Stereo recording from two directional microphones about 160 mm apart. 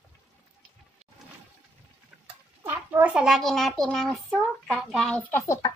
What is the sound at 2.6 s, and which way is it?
Speech, 10° right (ahead or behind).